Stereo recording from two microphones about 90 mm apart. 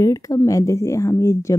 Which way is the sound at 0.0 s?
40° left (ahead or behind).